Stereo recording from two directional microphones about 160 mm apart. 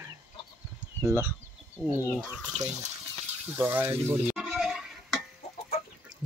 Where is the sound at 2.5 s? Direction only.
45° right (ahead or behind).